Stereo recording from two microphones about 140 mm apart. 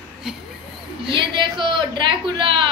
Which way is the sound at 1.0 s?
35° right (ahead or behind).